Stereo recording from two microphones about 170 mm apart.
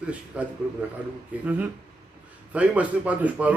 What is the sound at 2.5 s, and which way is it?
A man's voice, 10° right (ahead or behind).